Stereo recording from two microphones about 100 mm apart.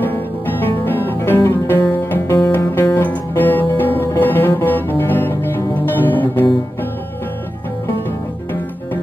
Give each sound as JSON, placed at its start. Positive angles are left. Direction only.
{"t": 0.0, "sound": "music", "side_deg": 20}